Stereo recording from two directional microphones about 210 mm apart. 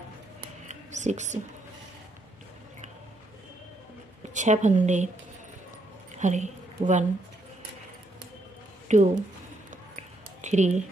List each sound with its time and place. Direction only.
0.7 s whispering: 35° right (ahead or behind)
4.3 s a woman's voice: 35° right (ahead or behind)
6.1 s a woman's voice: 35° right (ahead or behind)
8.8 s a sound: 35° right (ahead or behind)